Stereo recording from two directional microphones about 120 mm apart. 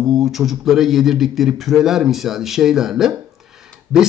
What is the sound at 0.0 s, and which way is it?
Speech, centre (ahead or behind).